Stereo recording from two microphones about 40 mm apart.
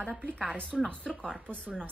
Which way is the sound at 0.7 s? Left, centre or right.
Centre.